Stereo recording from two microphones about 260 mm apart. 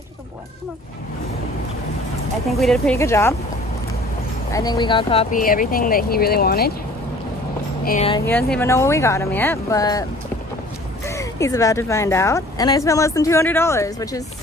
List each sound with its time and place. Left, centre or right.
2.4 s speech: centre
4.5 s speech: centre; by 6.7 s left
7.8 s speech: left
8.3 s speech: centre
11.1 s speech: centre